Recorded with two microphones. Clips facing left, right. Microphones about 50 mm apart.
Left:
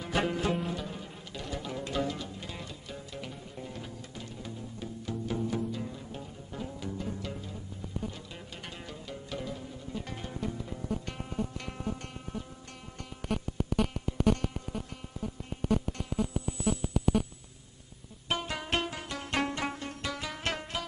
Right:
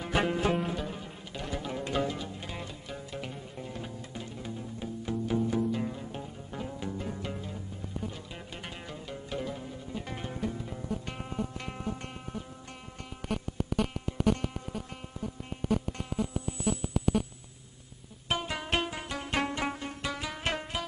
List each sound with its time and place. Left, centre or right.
0.0 s music: centre
5.7 s music: right
8.6 s music: centre
13.2 s a sound: centre
14.4 s music: centre
15.7 s a sound: centre
18.3 s music: centre